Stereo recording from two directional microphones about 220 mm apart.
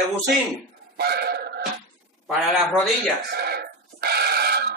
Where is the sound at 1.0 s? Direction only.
45° right (ahead or behind).